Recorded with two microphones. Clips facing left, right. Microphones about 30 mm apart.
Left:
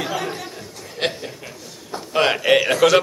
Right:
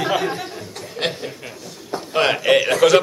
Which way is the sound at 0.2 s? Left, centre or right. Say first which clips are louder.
Right 4 dB; centre.